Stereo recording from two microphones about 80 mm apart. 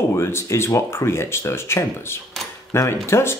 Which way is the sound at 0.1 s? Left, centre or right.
Left.